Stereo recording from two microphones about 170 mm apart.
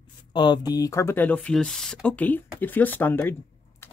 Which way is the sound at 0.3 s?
25° left (ahead or behind).